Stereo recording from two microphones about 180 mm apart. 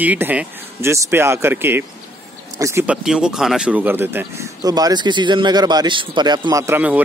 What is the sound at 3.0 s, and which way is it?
Speech, 5° right (ahead or behind).